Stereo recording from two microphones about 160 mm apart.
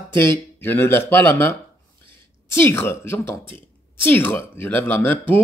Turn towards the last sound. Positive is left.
turn(degrees=10)  # may be behind; listen again after turning